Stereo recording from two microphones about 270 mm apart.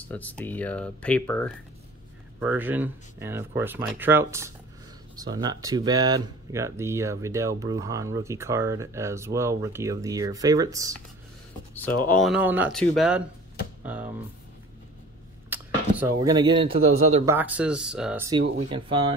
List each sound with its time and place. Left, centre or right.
0.0 s speech: centre
2.4 s speech: centre
11.7 s speech: centre
15.5 s a sound: centre
17.3 s speech: centre
18.6 s speech: centre